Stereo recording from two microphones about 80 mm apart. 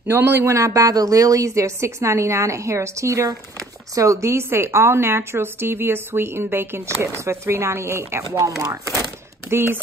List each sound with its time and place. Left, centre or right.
0.1 s speech: right
8.4 s chopping: right
9.5 s speech: right